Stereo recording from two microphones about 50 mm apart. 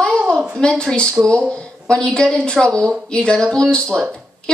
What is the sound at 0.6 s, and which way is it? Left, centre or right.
A woman's voice, centre.